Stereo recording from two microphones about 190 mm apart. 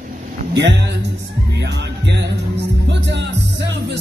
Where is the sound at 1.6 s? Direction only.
65° right (ahead or behind).